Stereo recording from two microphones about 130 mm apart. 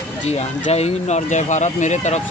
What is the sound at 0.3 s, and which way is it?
Speech, 55° left (ahead or behind).